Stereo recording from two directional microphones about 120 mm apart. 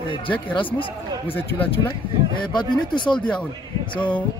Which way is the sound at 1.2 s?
15° left (ahead or behind).